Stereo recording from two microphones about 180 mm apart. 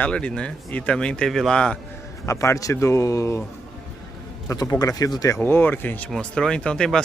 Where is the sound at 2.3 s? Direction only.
15° left (ahead or behind).